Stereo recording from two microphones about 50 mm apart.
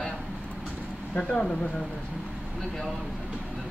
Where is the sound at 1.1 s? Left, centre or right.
Centre.